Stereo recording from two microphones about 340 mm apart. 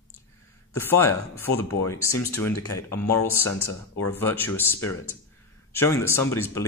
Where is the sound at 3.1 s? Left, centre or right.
Left.